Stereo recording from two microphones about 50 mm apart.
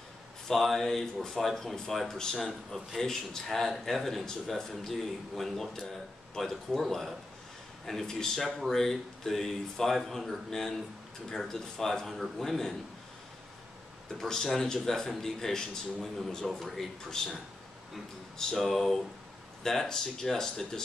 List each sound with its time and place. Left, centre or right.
0.5 s speech: centre
14.2 s speech: centre
18.4 s speech: centre